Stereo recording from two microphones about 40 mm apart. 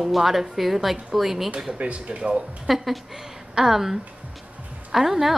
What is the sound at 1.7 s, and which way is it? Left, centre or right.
Speech, right.